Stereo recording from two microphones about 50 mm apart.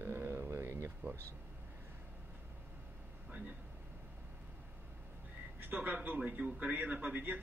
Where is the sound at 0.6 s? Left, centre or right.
Right.